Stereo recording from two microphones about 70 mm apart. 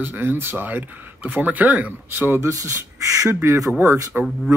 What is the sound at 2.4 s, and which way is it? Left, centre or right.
Speech, right.